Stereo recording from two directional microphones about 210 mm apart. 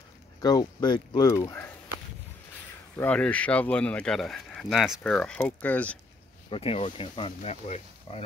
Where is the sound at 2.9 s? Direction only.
5° left (ahead or behind).